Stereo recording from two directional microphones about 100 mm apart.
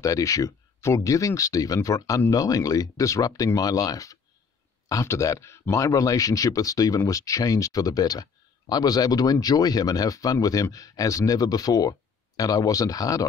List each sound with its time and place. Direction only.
0.0 s speech: 35° left (ahead or behind)